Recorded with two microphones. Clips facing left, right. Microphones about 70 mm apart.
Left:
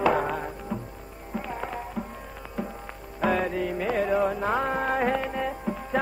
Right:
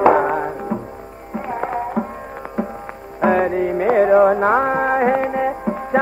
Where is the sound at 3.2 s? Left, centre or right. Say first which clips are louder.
Right 9 dB; right.